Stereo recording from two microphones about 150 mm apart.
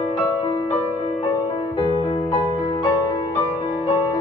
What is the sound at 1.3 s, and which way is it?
Music, 30° left (ahead or behind).